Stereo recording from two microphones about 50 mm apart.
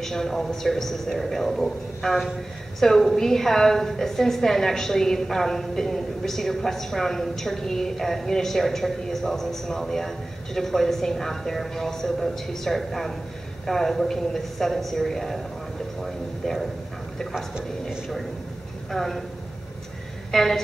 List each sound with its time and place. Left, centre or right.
0.0 s a woman's voice: centre
18.9 s speech: centre
20.2 s a woman's voice: centre